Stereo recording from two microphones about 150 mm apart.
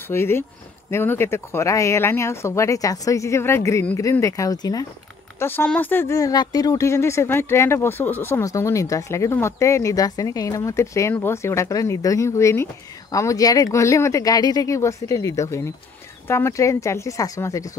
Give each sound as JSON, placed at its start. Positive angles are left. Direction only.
{"t": 0.1, "sound": "speech", "side_deg": 15}
{"t": 5.4, "sound": "speech", "side_deg": 10}